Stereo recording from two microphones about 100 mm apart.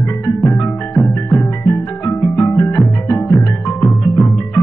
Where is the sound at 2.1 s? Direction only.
20° left (ahead or behind).